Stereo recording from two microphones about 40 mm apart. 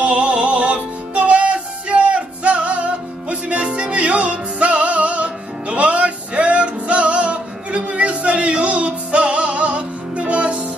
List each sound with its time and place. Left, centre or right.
0.0 s music: right